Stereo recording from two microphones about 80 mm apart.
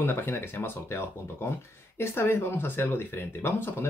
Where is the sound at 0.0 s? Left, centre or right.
Left.